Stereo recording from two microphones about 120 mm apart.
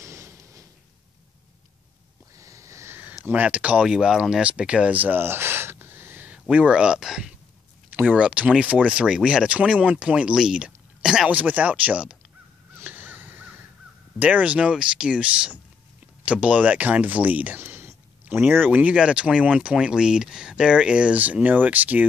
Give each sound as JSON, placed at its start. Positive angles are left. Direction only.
{"t": 0.0, "sound": "a sound", "side_deg": -25}
{"t": 2.3, "sound": "sniff", "side_deg": -25}
{"t": 3.3, "sound": "speech", "side_deg": -15}
{"t": 12.7, "sound": "crow", "side_deg": -15}
{"t": 14.2, "sound": "speech", "side_deg": -10}